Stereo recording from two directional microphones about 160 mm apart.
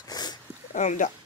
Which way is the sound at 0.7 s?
50° left (ahead or behind).